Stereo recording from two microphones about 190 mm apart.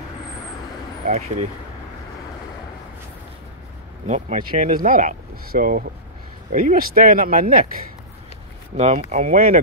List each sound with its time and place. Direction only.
1.0 s speech: 40° right (ahead or behind)
4.1 s speech: 45° right (ahead or behind)
8.7 s speech: 35° right (ahead or behind)